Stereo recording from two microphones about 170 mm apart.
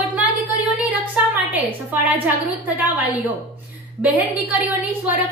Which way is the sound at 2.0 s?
10° right (ahead or behind).